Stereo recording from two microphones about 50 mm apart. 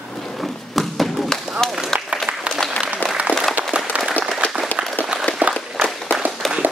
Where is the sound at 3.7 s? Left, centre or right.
Right.